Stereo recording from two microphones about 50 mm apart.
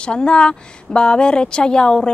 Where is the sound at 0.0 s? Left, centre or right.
Centre.